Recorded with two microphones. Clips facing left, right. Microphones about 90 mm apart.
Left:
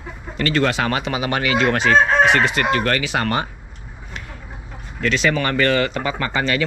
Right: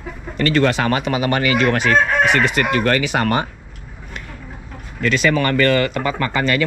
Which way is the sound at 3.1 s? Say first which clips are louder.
Right 3 dB; 20° right (ahead or behind).